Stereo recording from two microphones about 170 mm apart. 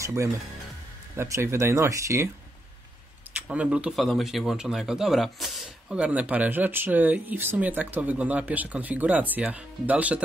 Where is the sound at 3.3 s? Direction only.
10° right (ahead or behind).